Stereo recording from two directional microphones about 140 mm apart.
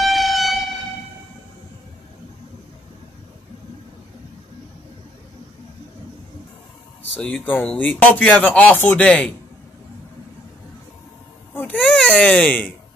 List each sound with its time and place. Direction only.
0.0 s train: centre (ahead or behind)
7.2 s speech: 10° left (ahead or behind)
11.5 s baby cry: 10° left (ahead or behind)